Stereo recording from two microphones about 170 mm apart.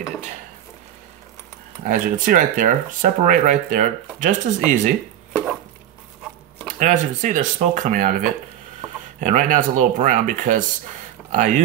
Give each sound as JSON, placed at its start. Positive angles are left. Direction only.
{"t": 1.9, "sound": "speech", "side_deg": -55}
{"t": 6.8, "sound": "speech", "side_deg": -45}
{"t": 9.2, "sound": "speech", "side_deg": -50}